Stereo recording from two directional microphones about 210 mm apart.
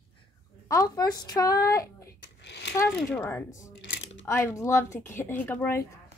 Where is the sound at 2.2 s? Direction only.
55° left (ahead or behind).